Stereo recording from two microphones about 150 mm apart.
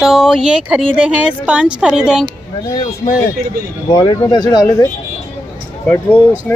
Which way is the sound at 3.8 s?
25° left (ahead or behind).